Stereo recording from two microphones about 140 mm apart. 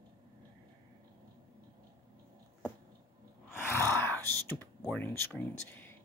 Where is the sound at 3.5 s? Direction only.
15° left (ahead or behind).